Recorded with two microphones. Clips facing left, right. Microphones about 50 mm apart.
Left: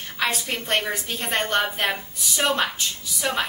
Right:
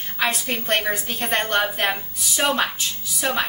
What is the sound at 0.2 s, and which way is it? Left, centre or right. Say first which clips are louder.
A woman's voice: right 2 dB; centre.